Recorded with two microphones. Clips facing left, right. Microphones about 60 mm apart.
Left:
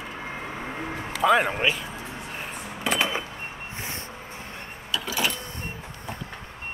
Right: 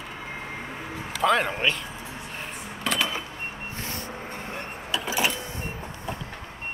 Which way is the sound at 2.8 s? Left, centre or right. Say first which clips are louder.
Left 2 dB; left.